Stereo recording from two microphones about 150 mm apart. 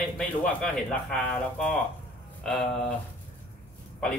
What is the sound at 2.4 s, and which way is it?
Speech, 5° left (ahead or behind).